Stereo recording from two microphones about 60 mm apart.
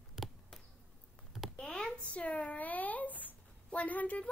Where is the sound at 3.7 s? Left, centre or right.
Left.